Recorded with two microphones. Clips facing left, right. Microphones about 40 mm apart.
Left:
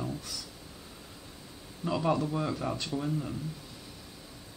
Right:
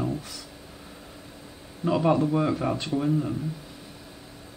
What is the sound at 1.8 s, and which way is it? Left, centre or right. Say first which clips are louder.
Speech: right 7 dB; centre.